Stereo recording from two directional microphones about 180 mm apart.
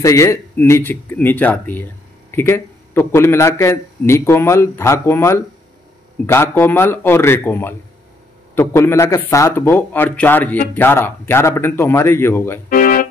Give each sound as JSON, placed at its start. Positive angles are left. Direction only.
{"t": 0.0, "sound": "a man's voice", "side_deg": 15}
{"t": 12.6, "sound": "music", "side_deg": 50}